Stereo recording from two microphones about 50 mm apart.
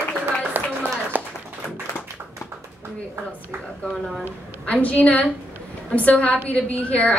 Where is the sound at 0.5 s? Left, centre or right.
Right.